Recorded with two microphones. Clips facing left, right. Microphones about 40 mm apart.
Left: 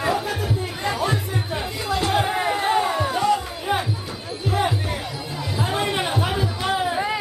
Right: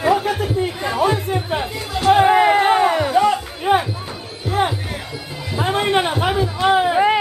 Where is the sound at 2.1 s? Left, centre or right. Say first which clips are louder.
Right 13 dB; right.